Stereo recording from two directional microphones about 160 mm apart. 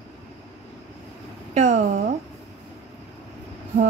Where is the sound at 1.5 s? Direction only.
50° right (ahead or behind).